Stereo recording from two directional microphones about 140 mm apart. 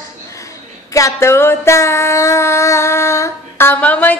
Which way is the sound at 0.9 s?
20° left (ahead or behind).